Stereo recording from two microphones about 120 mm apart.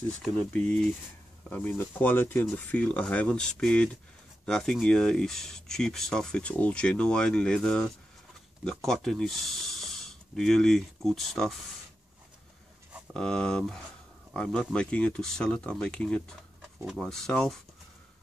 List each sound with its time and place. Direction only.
0.2 s speech: 10° left (ahead or behind)
13.1 s speech: 5° left (ahead or behind)